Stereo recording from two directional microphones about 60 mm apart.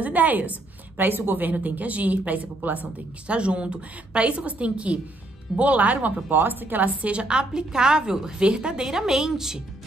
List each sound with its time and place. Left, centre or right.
0.0 s a woman's voice: right; by 9.6 s centre